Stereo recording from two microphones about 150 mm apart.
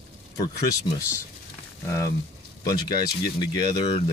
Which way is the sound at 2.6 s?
25° left (ahead or behind).